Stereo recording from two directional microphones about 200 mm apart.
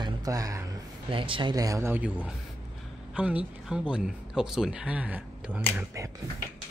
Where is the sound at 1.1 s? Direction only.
25° right (ahead or behind).